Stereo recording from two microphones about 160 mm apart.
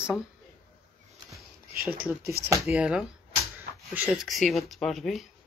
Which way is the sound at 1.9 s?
10° right (ahead or behind).